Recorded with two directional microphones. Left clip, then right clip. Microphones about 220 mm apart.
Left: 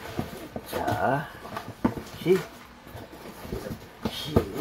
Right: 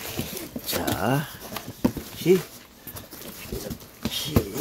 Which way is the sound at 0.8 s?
90° right.